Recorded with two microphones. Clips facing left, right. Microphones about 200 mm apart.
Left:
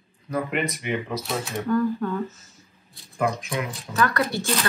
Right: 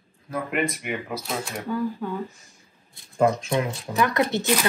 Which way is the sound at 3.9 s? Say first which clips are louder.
Right 1 dB; 15° right (ahead or behind).